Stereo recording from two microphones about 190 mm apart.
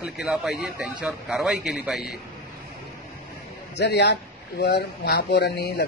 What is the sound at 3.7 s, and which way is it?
Speech, 65° left (ahead or behind).